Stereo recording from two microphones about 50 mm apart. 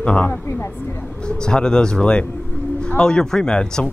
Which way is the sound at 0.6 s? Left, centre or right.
Left.